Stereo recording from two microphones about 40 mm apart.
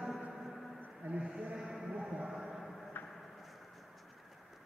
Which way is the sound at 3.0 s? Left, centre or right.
Left.